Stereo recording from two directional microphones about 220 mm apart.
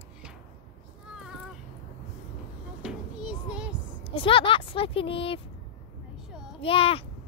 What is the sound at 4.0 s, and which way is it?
Speech, 25° left (ahead or behind).